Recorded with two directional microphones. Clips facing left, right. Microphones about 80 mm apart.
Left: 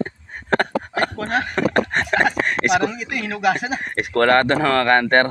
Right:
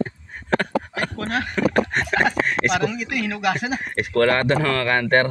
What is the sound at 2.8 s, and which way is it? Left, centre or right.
Speech, left.